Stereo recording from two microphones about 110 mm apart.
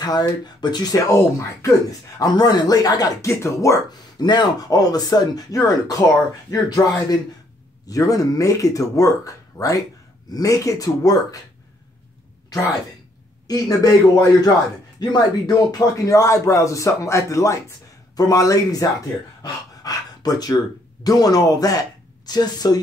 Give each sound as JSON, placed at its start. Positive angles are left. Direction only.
{"t": 0.0, "sound": "speech", "side_deg": 40}
{"t": 4.2, "sound": "speech", "side_deg": 40}
{"t": 7.9, "sound": "speech", "side_deg": 30}
{"t": 13.5, "sound": "speech", "side_deg": 35}
{"t": 19.4, "sound": "dog", "side_deg": 35}
{"t": 21.0, "sound": "speech", "side_deg": 35}